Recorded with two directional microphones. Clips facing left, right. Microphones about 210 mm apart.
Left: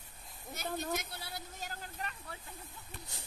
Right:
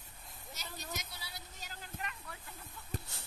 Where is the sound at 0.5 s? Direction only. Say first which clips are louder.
Left 9 dB; 55° left (ahead or behind).